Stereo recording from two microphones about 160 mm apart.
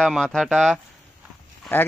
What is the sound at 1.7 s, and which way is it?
Speech, 15° left (ahead or behind).